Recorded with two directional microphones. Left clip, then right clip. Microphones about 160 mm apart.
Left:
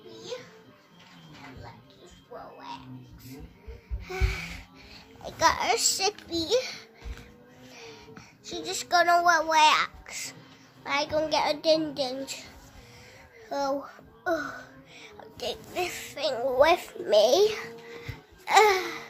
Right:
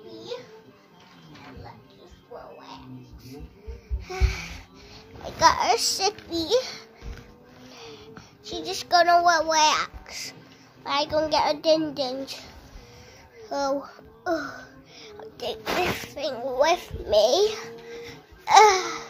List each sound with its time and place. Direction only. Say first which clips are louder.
4.0 s music: right 1 dB; 5° right (ahead or behind)
5.2 s a child's voice: right 4 dB; 20° left (ahead or behind)
7.7 s child singing: right 3 dB; 5° left (ahead or behind); by 10.3 s 20° left (ahead or behind)
10.8 s a child's voice: right 3 dB; 10° left (ahead or behind)
13.5 s a sound: right 3 dB; 10° left (ahead or behind); by 16.4 s 35° left (ahead or behind)
16.4 s a child's voice: left 1 dB; 20° left (ahead or behind); by 19.0 s centre (ahead or behind)